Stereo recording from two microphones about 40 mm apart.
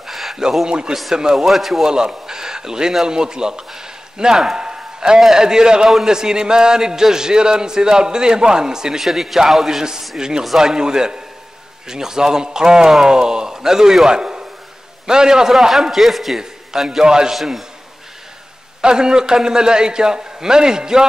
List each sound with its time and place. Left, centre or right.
0.0 s a sound: centre
0.4 s a man's voice: centre
1.9 s speech: centre
4.6 s a sound: centre
5.2 s a man's voice: centre
15.9 s a man's voice: centre
17.4 s speech: centre
18.8 s a man's voice: centre